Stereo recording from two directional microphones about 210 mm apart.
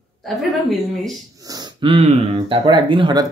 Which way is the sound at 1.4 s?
15° right (ahead or behind).